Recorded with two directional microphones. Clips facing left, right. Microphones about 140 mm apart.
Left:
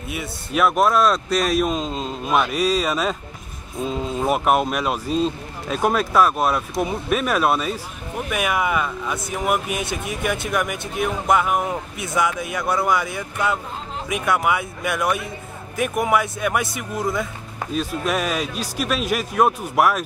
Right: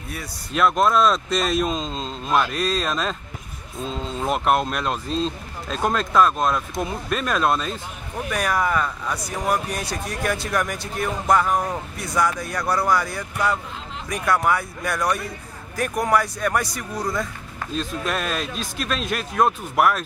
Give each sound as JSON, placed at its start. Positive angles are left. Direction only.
{"t": 0.2, "sound": "speech", "side_deg": 5}